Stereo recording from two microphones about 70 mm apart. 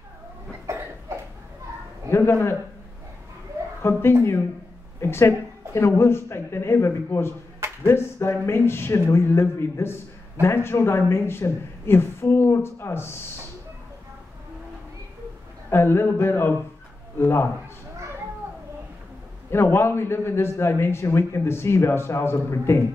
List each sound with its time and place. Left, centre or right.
1.1 s a sound: right
2.0 s a man's voice: left
3.8 s a man's voice: left
15.7 s a man's voice: left
19.5 s a man's voice: left